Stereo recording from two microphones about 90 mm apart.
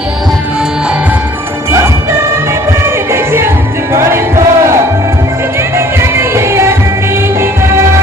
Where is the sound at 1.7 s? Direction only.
30° right (ahead or behind).